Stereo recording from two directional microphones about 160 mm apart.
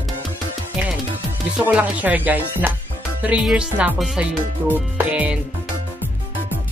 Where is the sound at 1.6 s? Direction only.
10° right (ahead or behind).